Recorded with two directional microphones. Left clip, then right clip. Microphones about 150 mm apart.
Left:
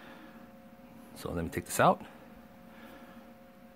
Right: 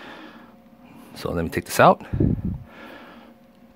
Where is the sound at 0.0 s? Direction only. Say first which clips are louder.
Right 11 dB; 50° right (ahead or behind).